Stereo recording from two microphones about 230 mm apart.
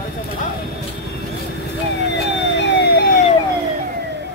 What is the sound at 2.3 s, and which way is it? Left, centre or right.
Emergency vehicle, left.